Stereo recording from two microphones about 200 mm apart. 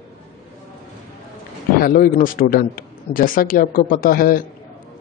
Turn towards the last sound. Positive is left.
turn(degrees=45)  # may be behind; listen again after turning